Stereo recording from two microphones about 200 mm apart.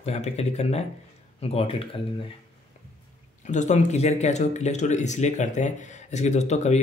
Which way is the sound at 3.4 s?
35° left (ahead or behind).